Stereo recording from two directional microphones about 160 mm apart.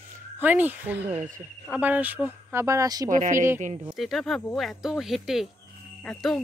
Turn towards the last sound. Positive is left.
turn(degrees=5)  # may be behind; listen again after turning